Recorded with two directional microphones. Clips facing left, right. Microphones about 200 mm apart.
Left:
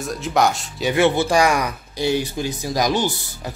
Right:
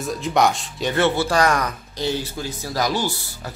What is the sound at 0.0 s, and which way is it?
Speech, centre (ahead or behind).